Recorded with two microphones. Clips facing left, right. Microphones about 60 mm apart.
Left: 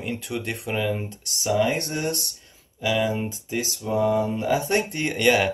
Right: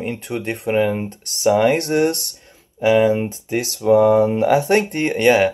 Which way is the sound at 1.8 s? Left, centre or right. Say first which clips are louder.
Right 10 dB; right.